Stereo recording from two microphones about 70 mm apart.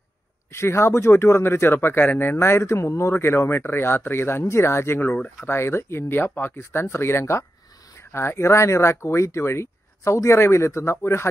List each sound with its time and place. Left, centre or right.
0.5 s speech: left
2.3 s speech: left